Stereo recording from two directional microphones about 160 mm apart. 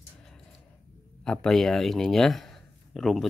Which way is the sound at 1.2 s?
5° left (ahead or behind).